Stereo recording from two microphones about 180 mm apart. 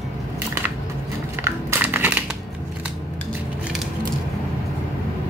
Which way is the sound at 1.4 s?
10° right (ahead or behind).